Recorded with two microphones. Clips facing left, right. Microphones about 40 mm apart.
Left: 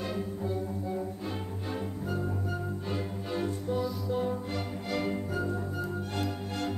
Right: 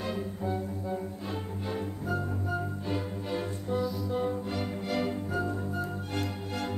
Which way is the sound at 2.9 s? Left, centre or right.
Centre.